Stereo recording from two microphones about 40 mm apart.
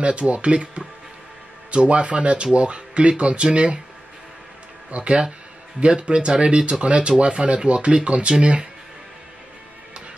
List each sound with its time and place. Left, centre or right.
0.0 s speech: right
4.9 s speech: right